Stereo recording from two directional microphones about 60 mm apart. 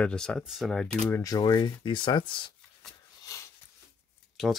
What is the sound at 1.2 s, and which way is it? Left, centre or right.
Speech, left.